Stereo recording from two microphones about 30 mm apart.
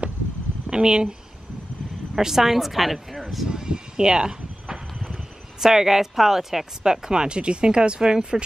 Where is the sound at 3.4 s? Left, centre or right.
Right.